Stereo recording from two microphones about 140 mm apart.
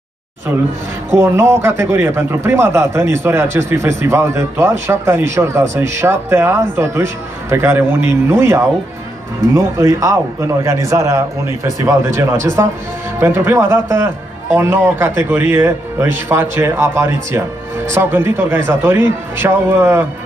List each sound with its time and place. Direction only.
1.1 s a man's voice: 20° right (ahead or behind)